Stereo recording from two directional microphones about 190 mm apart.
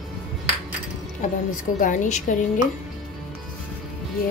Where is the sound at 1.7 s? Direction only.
45° left (ahead or behind).